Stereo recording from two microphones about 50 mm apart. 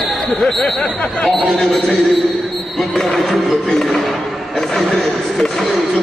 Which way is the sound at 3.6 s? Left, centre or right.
Centre.